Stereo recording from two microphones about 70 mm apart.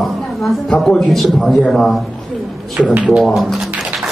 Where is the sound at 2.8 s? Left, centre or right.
Centre.